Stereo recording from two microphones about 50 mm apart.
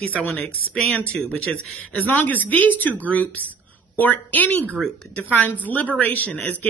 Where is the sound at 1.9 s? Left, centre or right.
Left.